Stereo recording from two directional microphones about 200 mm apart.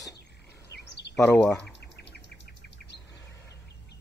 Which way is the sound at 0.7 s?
60° left (ahead or behind).